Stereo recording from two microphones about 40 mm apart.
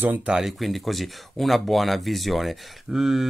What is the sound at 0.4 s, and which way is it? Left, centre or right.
Speech, centre.